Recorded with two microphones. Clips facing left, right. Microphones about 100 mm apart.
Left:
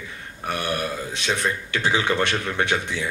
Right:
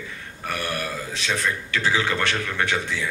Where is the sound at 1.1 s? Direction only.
20° left (ahead or behind).